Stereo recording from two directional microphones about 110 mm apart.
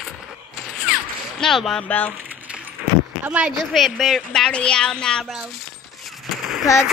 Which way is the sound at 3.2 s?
10° right (ahead or behind).